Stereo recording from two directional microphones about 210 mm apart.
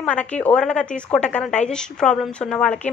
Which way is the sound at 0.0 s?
5° left (ahead or behind).